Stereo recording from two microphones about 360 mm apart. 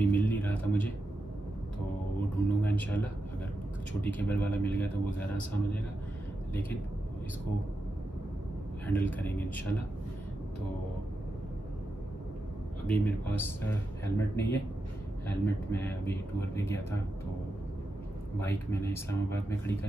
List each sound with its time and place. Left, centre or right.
0.1 s a sound: centre
2.3 s a man's voice: centre
8.8 s a man's voice: centre
12.8 s a man's voice: centre
18.4 s speech: centre